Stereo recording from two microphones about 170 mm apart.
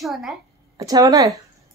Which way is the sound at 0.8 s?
20° right (ahead or behind).